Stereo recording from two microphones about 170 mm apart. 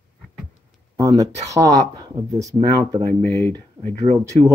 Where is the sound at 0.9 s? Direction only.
20° right (ahead or behind).